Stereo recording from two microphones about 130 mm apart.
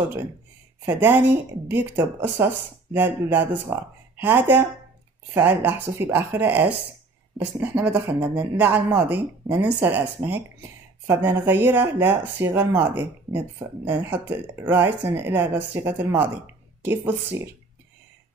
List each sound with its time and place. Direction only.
0.8 s speech: 15° right (ahead or behind)